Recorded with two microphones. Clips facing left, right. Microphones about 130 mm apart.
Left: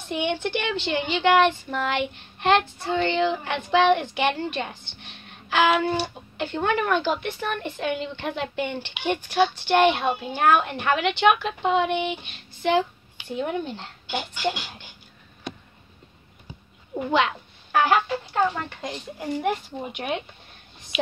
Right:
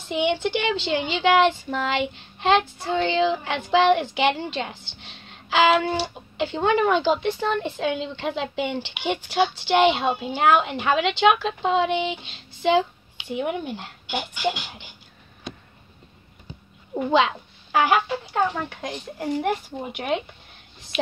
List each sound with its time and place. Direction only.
0.2 s a woman's voice: 10° right (ahead or behind)
1.7 s speech: centre (ahead or behind)
2.4 s a woman's voice: 10° right (ahead or behind)
11.4 s speech: 5° left (ahead or behind)
12.1 s child singing: 90° right
12.6 s speech: 15° right (ahead or behind)
16.9 s speech: 15° right (ahead or behind)